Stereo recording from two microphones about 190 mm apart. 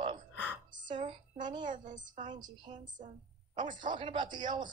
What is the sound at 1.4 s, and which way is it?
Speech, 25° right (ahead or behind).